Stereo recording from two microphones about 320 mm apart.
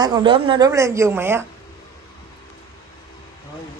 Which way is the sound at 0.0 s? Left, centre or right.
Centre.